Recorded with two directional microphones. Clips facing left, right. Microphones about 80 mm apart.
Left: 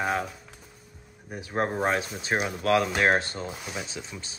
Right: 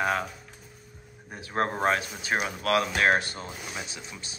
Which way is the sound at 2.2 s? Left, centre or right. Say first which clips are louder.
Left 1 dB; left.